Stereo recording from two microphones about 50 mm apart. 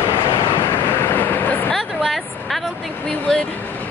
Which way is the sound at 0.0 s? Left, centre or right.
Left.